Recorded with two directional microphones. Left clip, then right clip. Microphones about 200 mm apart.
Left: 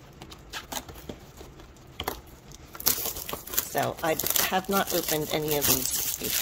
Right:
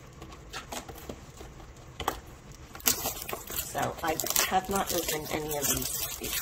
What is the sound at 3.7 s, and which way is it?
Speech, 50° left (ahead or behind).